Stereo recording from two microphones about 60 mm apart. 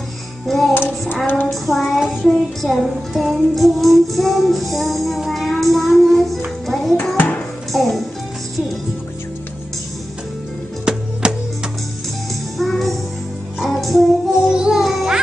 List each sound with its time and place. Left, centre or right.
0.5 s music: centre
0.7 s child singing: left
1.5 s music: centre
7.2 s music: left
7.7 s speech: centre
10.9 s music: centre
12.5 s music: centre
14.5 s music: centre